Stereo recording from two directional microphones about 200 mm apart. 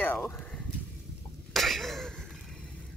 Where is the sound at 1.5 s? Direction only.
Centre (ahead or behind).